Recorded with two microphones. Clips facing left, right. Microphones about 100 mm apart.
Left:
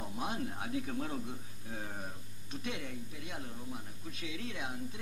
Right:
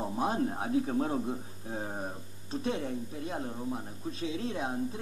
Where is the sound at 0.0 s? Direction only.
35° right (ahead or behind).